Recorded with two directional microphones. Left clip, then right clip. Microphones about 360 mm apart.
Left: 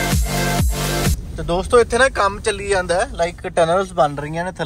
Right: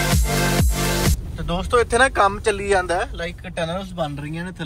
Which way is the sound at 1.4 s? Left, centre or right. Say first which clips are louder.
Left 5 dB; centre.